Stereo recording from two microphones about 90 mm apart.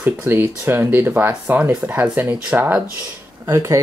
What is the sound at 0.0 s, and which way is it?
Speech, 25° right (ahead or behind).